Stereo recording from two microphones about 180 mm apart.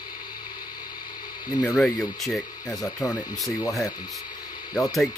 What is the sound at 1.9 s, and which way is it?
Speech, 20° left (ahead or behind).